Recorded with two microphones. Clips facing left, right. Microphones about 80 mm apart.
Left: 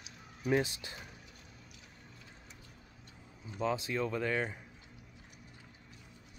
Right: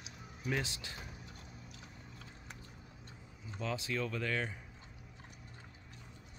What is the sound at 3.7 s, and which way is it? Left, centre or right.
Speech, left.